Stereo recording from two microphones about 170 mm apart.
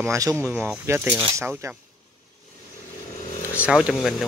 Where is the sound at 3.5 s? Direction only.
5° right (ahead or behind).